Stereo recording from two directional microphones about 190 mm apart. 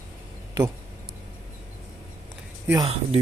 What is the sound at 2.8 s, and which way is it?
Speech, 30° right (ahead or behind).